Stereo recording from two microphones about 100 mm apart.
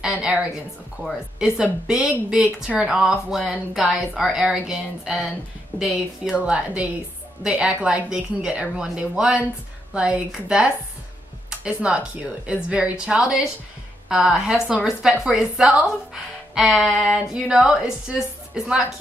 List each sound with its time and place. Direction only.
0.0 s a woman's voice: 10° right (ahead or behind)
2.4 s a woman's voice: 15° right (ahead or behind)